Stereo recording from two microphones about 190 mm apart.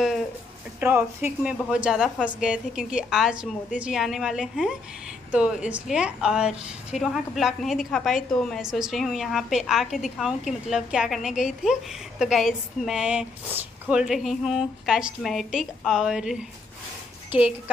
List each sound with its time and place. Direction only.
0.7 s a woman's voice: 10° right (ahead or behind)